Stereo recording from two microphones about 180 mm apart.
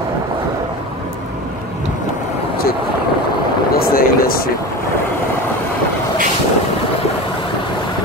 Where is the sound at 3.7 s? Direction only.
55° left (ahead or behind).